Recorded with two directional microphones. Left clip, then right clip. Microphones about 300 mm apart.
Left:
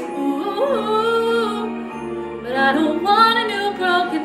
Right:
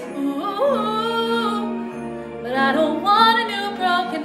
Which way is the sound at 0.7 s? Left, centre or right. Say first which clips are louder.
Left 3 dB; centre.